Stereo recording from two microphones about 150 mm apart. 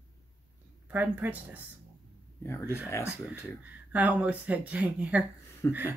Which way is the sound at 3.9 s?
10° right (ahead or behind).